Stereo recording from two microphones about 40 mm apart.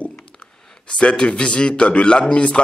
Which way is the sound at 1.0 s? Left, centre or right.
Left.